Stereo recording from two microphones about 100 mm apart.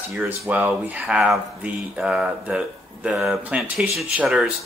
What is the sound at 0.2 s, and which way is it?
Speech, 15° right (ahead or behind).